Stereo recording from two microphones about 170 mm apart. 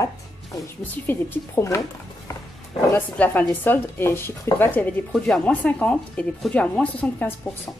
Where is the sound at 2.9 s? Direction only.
10° left (ahead or behind).